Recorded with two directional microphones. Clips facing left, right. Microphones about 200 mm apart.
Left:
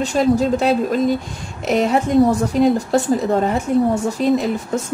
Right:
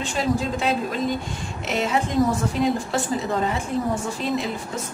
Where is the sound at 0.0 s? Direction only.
40° left (ahead or behind).